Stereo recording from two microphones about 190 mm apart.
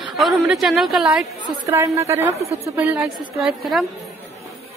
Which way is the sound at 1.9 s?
15° right (ahead or behind).